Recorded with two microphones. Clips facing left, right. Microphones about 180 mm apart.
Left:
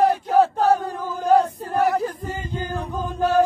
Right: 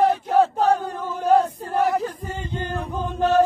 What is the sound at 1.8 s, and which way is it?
Chant, centre (ahead or behind).